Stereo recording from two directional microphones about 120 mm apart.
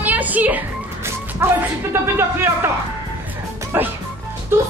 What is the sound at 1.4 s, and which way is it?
Speech, 20° right (ahead or behind).